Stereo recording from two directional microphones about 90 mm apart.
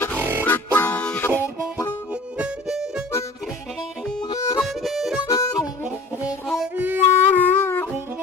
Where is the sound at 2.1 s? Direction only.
10° right (ahead or behind).